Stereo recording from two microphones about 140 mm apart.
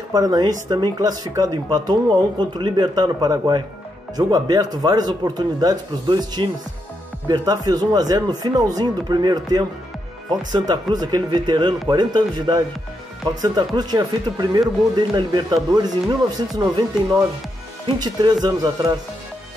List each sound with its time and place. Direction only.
0.1 s speech: 25° right (ahead or behind)
10.7 s speech: 30° right (ahead or behind)